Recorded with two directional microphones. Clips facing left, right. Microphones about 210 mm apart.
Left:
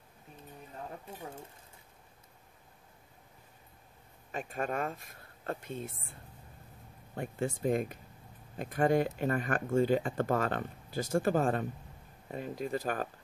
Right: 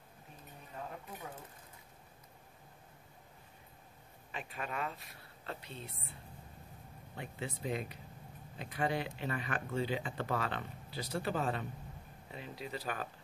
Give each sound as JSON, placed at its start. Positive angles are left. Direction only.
{"t": 4.3, "sound": "speech", "side_deg": 45}
{"t": 7.2, "sound": "speech", "side_deg": 45}